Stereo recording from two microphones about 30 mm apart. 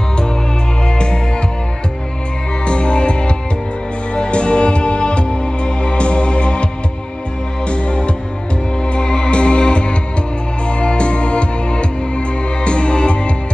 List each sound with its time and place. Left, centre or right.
0.8 s music: left
2.6 s music: left